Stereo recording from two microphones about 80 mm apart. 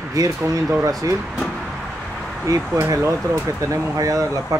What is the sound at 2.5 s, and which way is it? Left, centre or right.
Speech, right.